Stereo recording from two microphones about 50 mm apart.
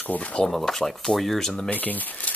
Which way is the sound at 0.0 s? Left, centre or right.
Left.